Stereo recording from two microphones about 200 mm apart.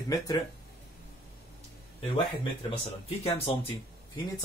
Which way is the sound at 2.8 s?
30° left (ahead or behind).